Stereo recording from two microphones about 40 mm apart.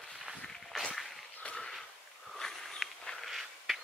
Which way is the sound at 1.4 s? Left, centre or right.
Left.